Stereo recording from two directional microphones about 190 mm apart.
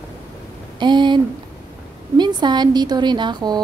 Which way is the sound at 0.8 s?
25° right (ahead or behind).